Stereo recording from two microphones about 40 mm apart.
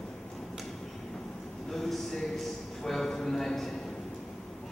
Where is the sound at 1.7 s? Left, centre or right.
Centre.